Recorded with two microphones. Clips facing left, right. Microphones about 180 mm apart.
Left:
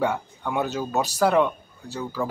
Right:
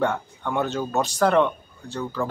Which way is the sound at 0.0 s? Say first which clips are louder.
Right 1 dB; 10° left (ahead or behind).